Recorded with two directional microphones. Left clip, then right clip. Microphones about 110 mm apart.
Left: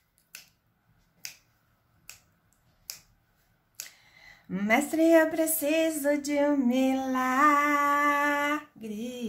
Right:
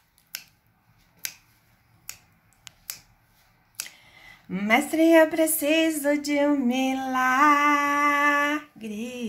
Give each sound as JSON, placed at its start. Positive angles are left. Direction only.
{"t": 4.0, "sound": "speech", "side_deg": 25}